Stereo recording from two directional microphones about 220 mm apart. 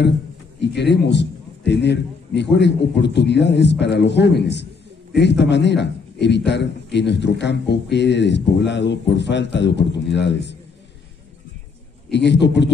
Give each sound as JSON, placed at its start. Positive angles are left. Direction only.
{"t": 0.6, "sound": "a man's voice", "side_deg": 50}
{"t": 12.1, "sound": "a man's voice", "side_deg": 50}